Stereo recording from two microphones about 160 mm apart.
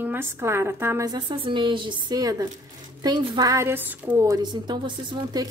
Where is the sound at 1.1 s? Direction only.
30° right (ahead or behind); by 4.2 s 10° right (ahead or behind).